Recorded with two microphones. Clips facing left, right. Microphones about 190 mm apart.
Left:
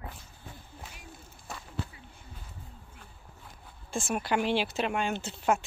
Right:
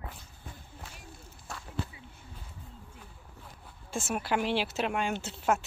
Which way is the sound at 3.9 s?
5° right (ahead or behind).